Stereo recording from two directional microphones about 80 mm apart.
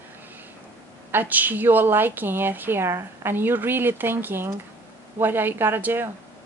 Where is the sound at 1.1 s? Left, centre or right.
Right.